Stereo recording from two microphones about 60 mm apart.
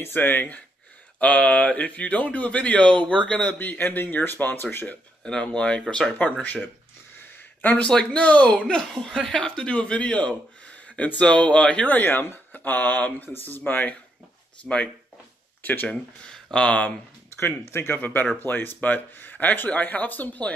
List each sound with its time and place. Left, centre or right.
0.0 s speech: left
1.2 s speech: left
3.5 s speech: left
5.2 s speech: centre
6.1 s speech: left
7.2 s a sound: left
7.9 s speech: centre
8.6 s speech: centre; by 13.9 s left
14.6 s speech: centre
15.6 s speech: left
16.3 s speech: centre
17.4 s speech: left
18.0 s speech: left